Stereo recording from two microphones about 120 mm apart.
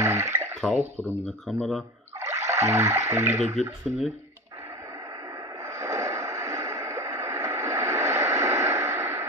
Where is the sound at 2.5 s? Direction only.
25° right (ahead or behind).